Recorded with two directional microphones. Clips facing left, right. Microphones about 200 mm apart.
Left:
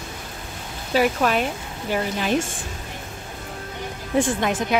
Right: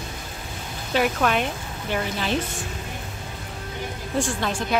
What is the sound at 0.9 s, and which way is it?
A woman's voice, 5° left (ahead or behind).